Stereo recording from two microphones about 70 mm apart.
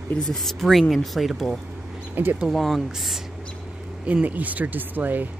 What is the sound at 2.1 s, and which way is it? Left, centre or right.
Speech, right.